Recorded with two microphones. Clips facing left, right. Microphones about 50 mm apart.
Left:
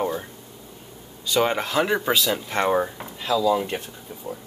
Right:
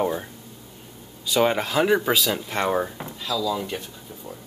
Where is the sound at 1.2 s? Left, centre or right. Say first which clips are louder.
Right 1 dB; centre.